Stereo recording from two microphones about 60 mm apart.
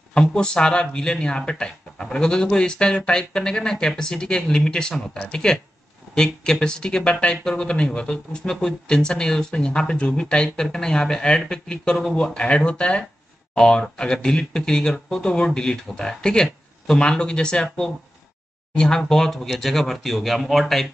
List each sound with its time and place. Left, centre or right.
0.1 s speech: centre